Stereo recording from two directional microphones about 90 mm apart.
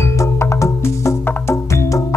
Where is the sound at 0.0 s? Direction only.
30° left (ahead or behind).